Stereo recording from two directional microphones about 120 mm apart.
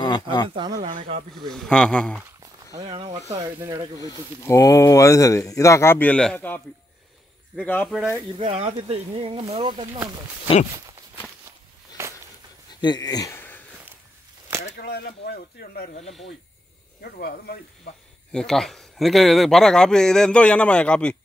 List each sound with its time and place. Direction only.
0.0 s speech: 35° left (ahead or behind)
0.5 s speech: 40° right (ahead or behind)
1.4 s a man's voice: 5° left (ahead or behind)
2.9 s speech: 45° right (ahead or behind)
3.6 s speech: 30° right (ahead or behind)
4.0 s speech: 25° left (ahead or behind)
7.6 s speech: 15° left (ahead or behind)
7.9 s a man's voice: 5° right (ahead or behind)
8.5 s speech: 60° right (ahead or behind)
12.0 s a sound: 20° right (ahead or behind)
12.8 s speech: 35° left (ahead or behind)
13.3 s a sound: 15° left (ahead or behind)
16.0 s speech: 60° left (ahead or behind)
18.3 s a man's voice: 5° left (ahead or behind)